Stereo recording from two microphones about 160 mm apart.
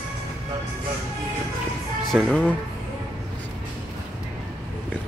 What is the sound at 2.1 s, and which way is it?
Speech, centre (ahead or behind).